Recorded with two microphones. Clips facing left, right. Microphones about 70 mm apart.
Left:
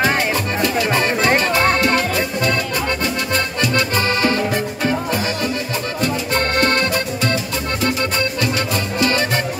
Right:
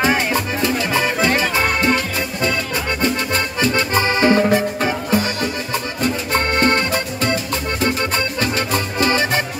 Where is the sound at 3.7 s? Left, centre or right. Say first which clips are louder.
Even; right.